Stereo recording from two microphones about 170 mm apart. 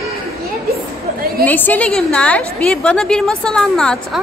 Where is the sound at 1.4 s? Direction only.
10° left (ahead or behind).